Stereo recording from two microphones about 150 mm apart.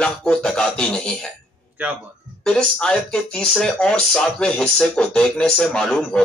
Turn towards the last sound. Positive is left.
turn(degrees=5)  # may be behind; listen again after turning